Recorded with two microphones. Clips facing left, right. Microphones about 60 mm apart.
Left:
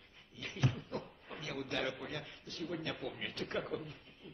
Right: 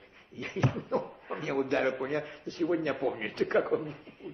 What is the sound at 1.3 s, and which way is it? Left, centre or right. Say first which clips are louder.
A man's voice: right 13 dB; right.